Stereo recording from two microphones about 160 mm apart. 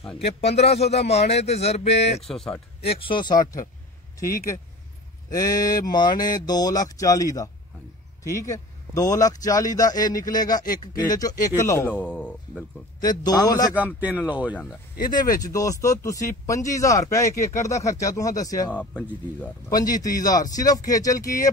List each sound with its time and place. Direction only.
0.4 s speech: 40° left (ahead or behind)
2.2 s speech: 5° left (ahead or behind)
2.9 s speech: 30° left (ahead or behind)
5.3 s speech: 25° left (ahead or behind)
10.6 s speech: 60° left (ahead or behind)
11.1 s a man's voice: 20° left (ahead or behind); by 12.6 s 5° left (ahead or behind)
13.0 s speech: 25° left (ahead or behind)
13.7 s speech: 10° right (ahead or behind)
15.0 s speech: 25° left (ahead or behind)
18.7 s a man's voice: 10° left (ahead or behind)
19.7 s speech: 25° left (ahead or behind)